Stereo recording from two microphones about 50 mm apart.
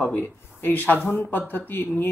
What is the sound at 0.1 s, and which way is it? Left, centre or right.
Speech, left.